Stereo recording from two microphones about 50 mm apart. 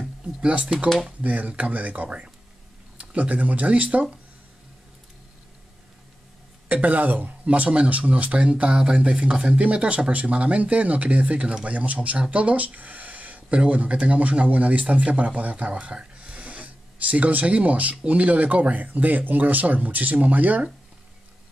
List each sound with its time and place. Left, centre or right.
0.4 s speech: centre
0.8 s speech: centre
1.2 s speech: right
6.7 s speech: right